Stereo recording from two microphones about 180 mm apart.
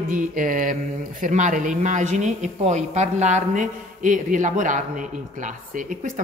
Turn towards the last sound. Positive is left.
turn(degrees=-45)  # may be behind; listen again after turning